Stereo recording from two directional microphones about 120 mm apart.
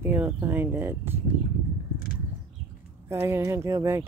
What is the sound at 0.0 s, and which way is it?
Speech, 15° right (ahead or behind).